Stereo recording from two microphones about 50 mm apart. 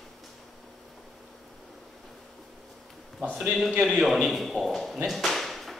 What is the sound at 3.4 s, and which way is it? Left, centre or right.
A man's voice, centre.